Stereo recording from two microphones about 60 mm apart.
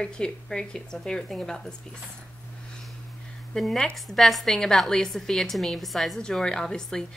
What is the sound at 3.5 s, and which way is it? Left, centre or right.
A woman's voice, centre.